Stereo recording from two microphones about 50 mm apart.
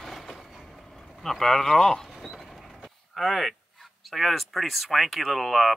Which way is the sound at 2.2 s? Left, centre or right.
Centre.